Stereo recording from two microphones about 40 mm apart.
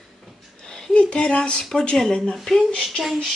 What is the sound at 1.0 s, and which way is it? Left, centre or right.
Speech, left.